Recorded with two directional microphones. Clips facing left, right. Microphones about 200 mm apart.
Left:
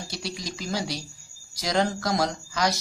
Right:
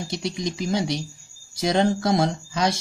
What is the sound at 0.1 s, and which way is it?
Speech, 20° right (ahead or behind).